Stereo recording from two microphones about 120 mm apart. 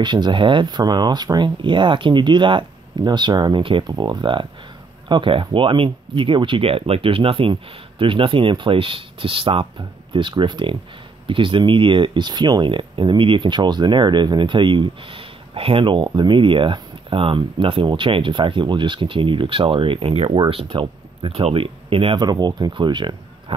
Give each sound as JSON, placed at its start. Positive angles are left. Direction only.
{"t": 0.0, "sound": "speech", "side_deg": -40}